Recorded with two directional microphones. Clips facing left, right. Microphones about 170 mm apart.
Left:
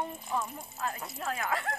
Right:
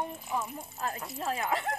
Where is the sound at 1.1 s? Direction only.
25° right (ahead or behind).